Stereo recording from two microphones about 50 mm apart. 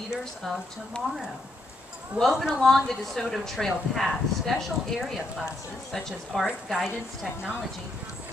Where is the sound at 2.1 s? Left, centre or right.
Centre.